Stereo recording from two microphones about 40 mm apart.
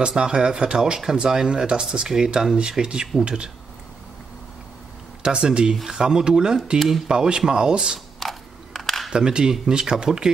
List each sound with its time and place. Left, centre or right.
0.0 s speech: centre
5.2 s speech: right
8.2 s a sound: centre
9.1 s speech: right